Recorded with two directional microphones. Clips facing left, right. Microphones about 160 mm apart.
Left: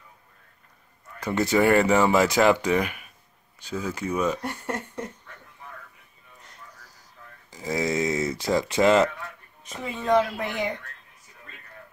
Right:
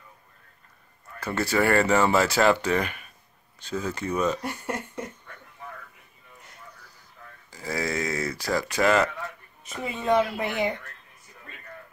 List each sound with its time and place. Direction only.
1.2 s speech: 20° left (ahead or behind)
4.4 s a sound: 5° right (ahead or behind)
7.5 s speech: 20° left (ahead or behind)
9.7 s speech: 5° right (ahead or behind)